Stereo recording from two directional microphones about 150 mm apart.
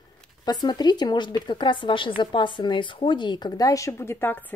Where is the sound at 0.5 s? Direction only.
30° left (ahead or behind).